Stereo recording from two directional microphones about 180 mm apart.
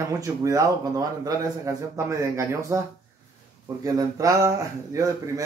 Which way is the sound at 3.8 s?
20° right (ahead or behind).